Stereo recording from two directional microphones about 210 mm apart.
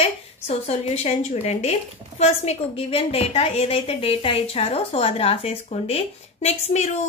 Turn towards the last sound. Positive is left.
turn(degrees=30)  # may be behind; listen again after turning